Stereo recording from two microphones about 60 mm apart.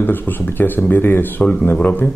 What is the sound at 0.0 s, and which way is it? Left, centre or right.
Speech, left.